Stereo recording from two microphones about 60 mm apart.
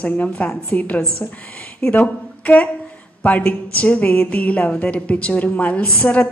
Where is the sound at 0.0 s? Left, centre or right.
Left.